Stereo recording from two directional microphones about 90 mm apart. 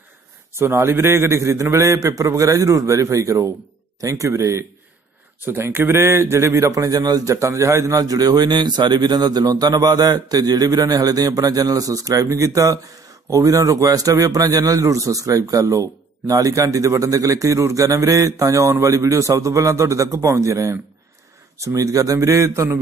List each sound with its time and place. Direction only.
0.6 s a man's voice: 30° right (ahead or behind)
8.0 s a man's voice: 45° right (ahead or behind)